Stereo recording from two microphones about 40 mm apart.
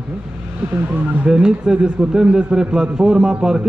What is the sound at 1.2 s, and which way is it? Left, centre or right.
A man's voice, right.